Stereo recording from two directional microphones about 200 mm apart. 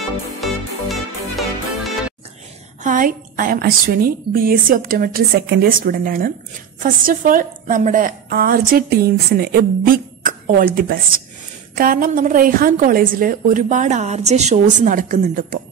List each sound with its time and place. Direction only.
0.4 s music: centre (ahead or behind)
2.8 s a woman's voice: 40° right (ahead or behind)